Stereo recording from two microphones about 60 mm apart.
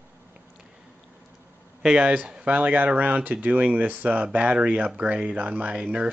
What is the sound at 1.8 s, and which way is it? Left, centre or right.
Speech, centre.